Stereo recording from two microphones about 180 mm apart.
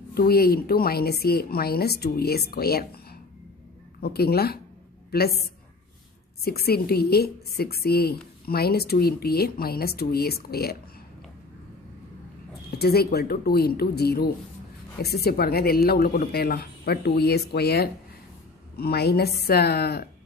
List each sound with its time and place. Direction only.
0.1 s a woman's voice: 60° left (ahead or behind)
6.4 s a woman's voice: 60° left (ahead or behind)
12.7 s a woman's voice: 60° left (ahead or behind)